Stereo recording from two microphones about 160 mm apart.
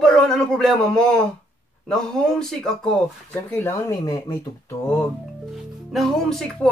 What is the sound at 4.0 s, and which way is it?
Speech, 25° left (ahead or behind).